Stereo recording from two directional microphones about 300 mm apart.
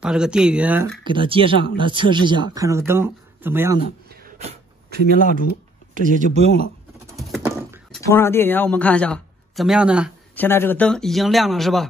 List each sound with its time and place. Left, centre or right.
0.0 s a man's voice: centre
1.0 s speech: centre
4.1 s a sound: right
5.2 s speech: left
5.9 s speech: right
7.2 s a sound: centre
8.1 s a man's voice: centre